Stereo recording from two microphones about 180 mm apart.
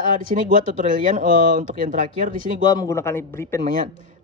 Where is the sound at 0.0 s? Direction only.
45° right (ahead or behind).